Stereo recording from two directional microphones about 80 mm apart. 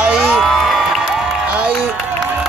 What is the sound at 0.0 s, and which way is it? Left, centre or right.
Crowd, centre.